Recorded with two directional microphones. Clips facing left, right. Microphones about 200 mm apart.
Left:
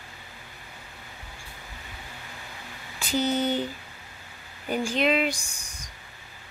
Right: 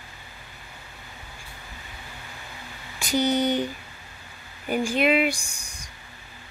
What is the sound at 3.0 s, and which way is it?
Speech, 15° right (ahead or behind).